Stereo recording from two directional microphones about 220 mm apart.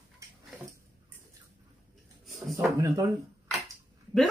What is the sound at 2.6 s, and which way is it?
Speech, 15° right (ahead or behind).